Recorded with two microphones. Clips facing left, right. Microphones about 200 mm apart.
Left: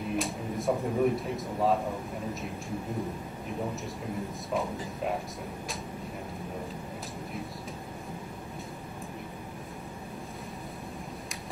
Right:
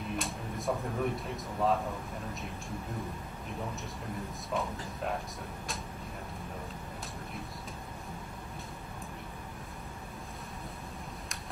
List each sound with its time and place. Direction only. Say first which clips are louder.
0.1 s speech: left 6 dB; centre (ahead or behind)
4.6 s speech: left 3 dB; centre (ahead or behind)